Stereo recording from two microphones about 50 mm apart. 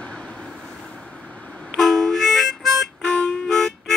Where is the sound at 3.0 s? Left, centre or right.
Left.